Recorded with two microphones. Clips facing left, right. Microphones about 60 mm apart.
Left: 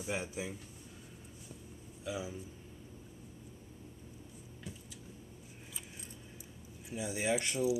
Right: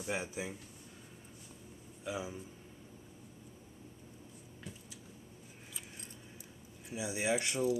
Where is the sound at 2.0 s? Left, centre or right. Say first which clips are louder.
Even; right.